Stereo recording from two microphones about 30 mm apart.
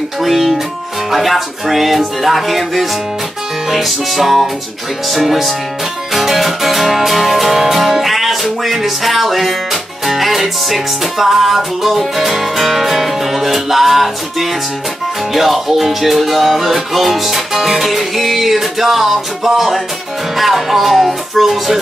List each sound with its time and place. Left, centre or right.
0.2 s music: centre